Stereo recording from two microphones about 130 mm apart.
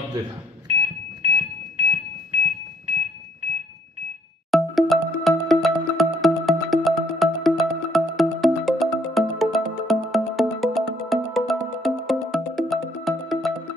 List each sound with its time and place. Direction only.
0.7 s smoke detector: 50° right (ahead or behind)
4.5 s music: centre (ahead or behind)